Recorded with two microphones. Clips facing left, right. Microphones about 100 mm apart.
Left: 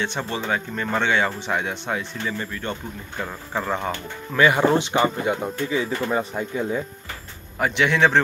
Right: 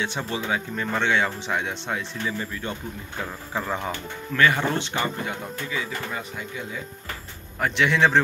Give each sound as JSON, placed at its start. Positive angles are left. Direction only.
{"t": 0.0, "sound": "speech", "side_deg": -5}
{"t": 3.9, "sound": "speech", "side_deg": 15}
{"t": 7.5, "sound": "speech", "side_deg": 5}